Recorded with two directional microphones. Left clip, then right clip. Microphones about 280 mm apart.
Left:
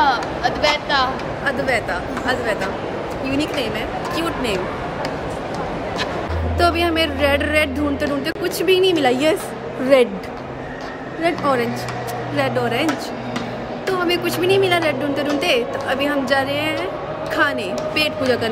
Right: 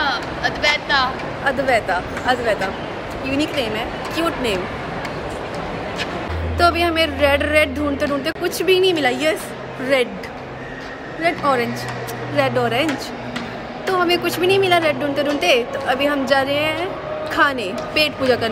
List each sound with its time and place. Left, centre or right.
0.0 s a sound: centre
1.4 s a woman's voice: centre
6.6 s a woman's voice: centre
11.2 s a woman's voice: centre